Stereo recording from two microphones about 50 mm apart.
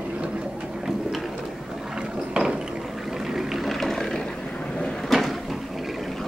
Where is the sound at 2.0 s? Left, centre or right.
Centre.